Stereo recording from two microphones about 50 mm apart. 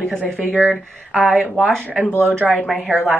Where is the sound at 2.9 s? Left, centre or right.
Right.